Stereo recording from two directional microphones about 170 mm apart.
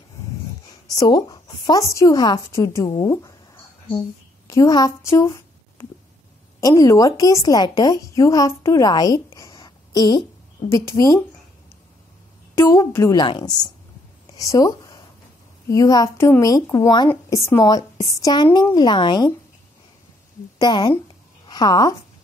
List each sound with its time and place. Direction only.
0.8 s a woman's voice: 20° left (ahead or behind)
12.5 s a woman's voice: 15° left (ahead or behind)
14.3 s a sound: 20° left (ahead or behind)
15.7 s a woman's voice: 20° left (ahead or behind)
20.5 s speech: 30° left (ahead or behind)